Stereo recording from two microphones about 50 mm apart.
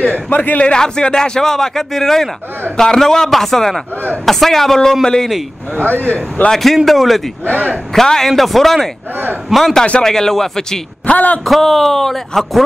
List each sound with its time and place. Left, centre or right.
0.3 s a man's voice: left
0.7 s a man's voice: centre
5.8 s speech: right
6.5 s speech: centre
7.5 s speech: right
7.9 s a man's voice: centre
11.1 s a man's voice: left
11.4 s speech: centre